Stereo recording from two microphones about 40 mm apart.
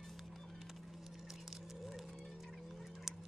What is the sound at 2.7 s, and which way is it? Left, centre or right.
Fowl, centre.